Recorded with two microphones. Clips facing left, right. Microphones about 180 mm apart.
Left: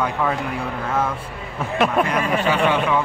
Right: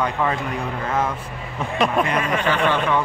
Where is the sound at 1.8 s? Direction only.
5° left (ahead or behind).